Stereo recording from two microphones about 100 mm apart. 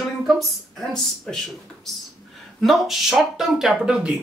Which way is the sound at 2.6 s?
5° right (ahead or behind).